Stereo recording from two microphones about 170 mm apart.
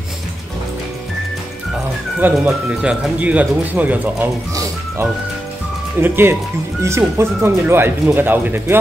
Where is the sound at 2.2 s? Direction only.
5° right (ahead or behind).